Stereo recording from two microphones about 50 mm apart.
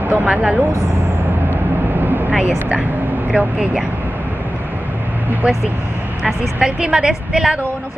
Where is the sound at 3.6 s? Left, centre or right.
Centre.